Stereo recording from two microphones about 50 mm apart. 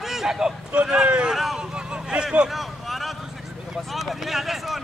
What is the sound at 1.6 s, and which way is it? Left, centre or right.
Vehicle, centre.